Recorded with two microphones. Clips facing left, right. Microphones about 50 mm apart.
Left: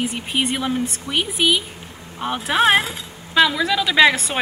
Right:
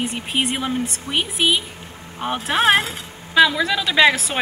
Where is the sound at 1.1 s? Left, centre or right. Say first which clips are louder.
Even; right.